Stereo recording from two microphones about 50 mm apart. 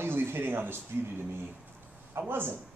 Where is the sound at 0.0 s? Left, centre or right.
Right.